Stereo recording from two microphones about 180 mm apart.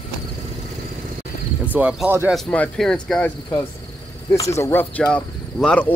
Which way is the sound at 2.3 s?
5° left (ahead or behind).